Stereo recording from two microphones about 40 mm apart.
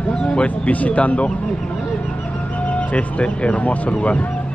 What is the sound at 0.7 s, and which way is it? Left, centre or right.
Speech, left.